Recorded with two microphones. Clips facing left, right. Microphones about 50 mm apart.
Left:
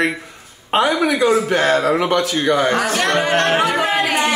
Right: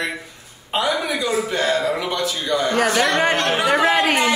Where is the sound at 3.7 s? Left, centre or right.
Right.